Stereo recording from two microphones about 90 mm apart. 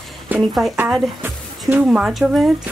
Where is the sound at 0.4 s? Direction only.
Centre (ahead or behind).